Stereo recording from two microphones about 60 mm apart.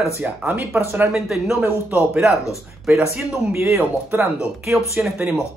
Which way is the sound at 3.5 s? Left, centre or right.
Right.